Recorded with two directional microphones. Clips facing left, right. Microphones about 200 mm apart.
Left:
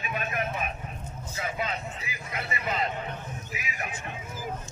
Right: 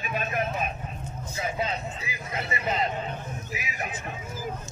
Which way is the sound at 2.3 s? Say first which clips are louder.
Right 3 dB; 25° right (ahead or behind).